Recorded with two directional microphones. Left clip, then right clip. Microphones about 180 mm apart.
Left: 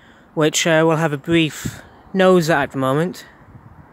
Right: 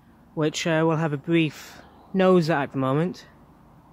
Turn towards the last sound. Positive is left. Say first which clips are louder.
# left 6 dB
turn(degrees=20)  # may be behind; listen again after turning